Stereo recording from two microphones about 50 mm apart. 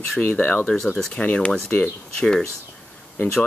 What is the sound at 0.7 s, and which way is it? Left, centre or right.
Speech, centre.